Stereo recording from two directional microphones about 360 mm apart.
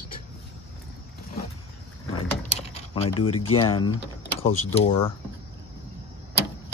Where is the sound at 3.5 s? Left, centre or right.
Centre.